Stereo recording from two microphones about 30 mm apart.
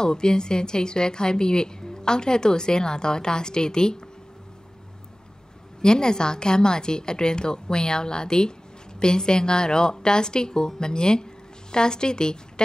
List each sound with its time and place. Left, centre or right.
0.0 s a woman's voice: left
5.8 s a woman's voice: left